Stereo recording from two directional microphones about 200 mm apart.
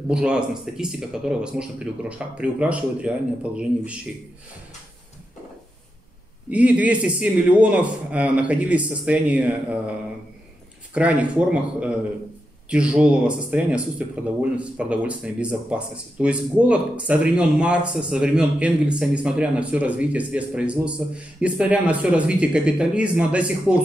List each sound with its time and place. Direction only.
0.1 s a man's voice: 5° right (ahead or behind)
6.5 s a man's voice: 5° right (ahead or behind)
11.0 s a man's voice: 5° right (ahead or behind)